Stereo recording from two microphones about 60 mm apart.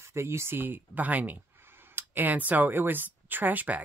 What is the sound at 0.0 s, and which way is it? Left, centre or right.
Speech, right.